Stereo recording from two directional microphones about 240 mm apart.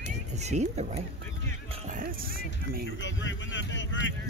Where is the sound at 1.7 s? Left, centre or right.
Right.